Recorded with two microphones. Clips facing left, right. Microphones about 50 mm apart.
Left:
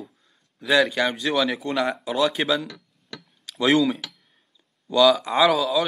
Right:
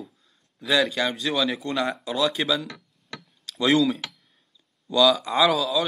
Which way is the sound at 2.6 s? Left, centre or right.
Right.